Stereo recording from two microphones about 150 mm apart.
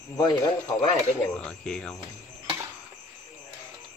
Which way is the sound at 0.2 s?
25° left (ahead or behind).